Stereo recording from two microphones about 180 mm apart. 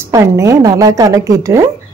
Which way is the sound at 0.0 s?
15° right (ahead or behind).